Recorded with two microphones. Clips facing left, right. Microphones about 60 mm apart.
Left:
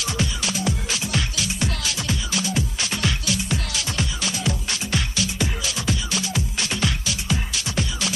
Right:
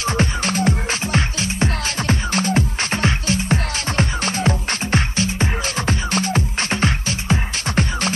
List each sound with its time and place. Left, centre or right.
0.0 s music: right